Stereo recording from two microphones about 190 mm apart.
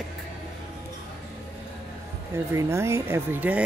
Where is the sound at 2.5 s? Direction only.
15° right (ahead or behind).